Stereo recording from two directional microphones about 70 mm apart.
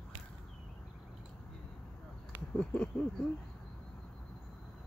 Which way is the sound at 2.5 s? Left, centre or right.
Centre.